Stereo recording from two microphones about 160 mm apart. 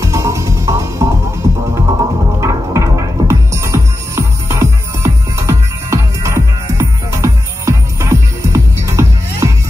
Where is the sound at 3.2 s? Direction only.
20° right (ahead or behind).